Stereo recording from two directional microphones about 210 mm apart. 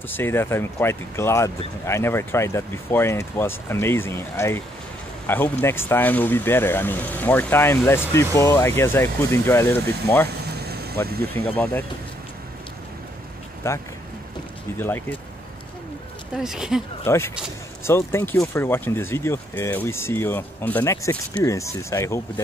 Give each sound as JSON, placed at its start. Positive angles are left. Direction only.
{"t": 0.1, "sound": "speech", "side_deg": 10}
{"t": 10.2, "sound": "vehicle", "side_deg": -50}
{"t": 11.3, "sound": "speech", "side_deg": 10}
{"t": 13.6, "sound": "speech", "side_deg": 10}
{"t": 16.3, "sound": "speech", "side_deg": 0}
{"t": 17.0, "sound": "speech", "side_deg": 10}